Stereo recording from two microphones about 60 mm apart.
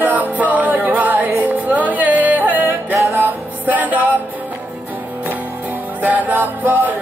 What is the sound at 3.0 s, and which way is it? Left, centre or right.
Music, right.